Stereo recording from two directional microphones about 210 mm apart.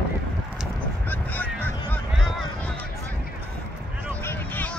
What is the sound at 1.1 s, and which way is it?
Honk, 10° left (ahead or behind).